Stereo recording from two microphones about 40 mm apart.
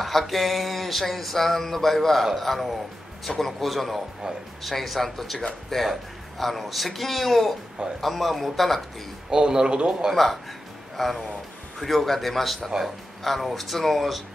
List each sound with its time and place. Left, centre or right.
0.0 s speech: centre
9.3 s a man's voice: centre
11.0 s speech: centre